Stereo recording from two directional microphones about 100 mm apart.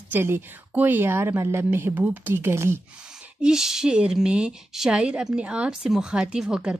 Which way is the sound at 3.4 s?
5° right (ahead or behind).